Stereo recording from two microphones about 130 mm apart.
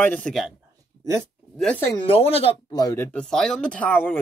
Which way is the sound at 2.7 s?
30° left (ahead or behind).